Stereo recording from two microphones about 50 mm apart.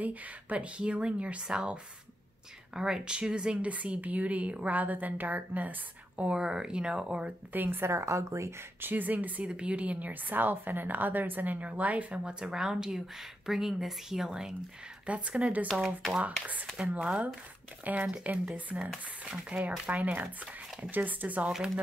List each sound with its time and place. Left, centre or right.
0.0 s speech: right
3.6 s a woman's voice: right
6.4 s speech: centre
7.5 s a woman's voice: right
8.8 s a woman's voice: right
9.5 s a woman's voice: right
12.3 s speech: centre
15.0 s speech: right
17.9 s a woman's voice: right